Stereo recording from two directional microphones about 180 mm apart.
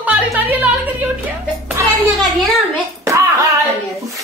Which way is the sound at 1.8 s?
15° right (ahead or behind).